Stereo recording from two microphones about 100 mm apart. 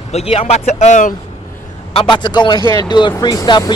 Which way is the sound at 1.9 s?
50° left (ahead or behind).